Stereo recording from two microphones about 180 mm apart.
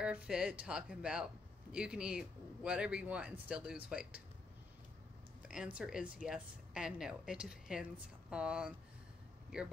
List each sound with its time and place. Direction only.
0.0 s speech: 5° right (ahead or behind)
5.5 s speech: 5° right (ahead or behind)